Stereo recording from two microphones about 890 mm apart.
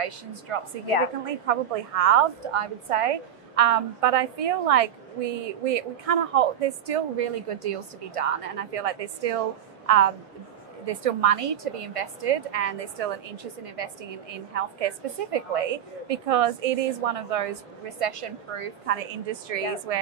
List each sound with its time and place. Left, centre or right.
0.5 s a woman's voice: right